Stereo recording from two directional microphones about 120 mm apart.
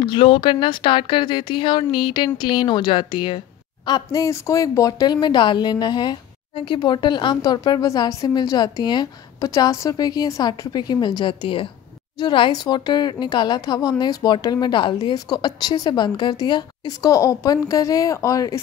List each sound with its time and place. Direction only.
0.0 s speech: 45° left (ahead or behind); by 18.6 s 25° left (ahead or behind)